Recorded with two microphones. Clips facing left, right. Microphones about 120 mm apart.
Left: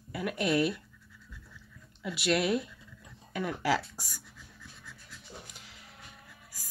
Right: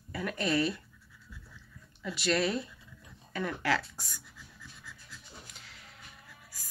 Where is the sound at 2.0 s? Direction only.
5° left (ahead or behind).